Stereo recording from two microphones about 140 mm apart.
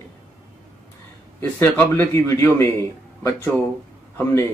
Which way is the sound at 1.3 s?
15° left (ahead or behind).